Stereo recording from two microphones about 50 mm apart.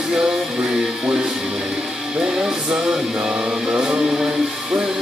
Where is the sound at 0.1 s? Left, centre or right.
Centre.